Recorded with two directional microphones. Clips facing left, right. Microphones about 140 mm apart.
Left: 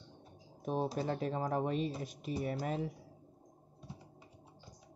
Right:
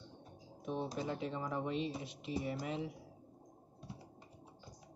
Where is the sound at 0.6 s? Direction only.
40° left (ahead or behind).